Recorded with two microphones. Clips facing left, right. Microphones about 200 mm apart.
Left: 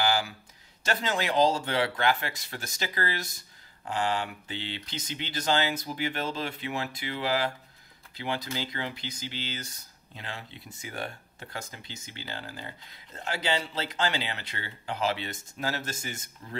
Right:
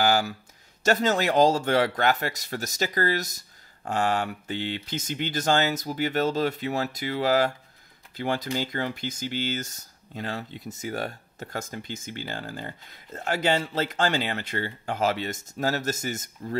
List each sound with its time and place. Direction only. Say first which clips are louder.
0.0 s speech: right 4 dB; 45° right (ahead or behind)